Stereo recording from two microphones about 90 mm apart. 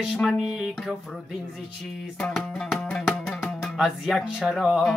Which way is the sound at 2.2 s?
5° left (ahead or behind).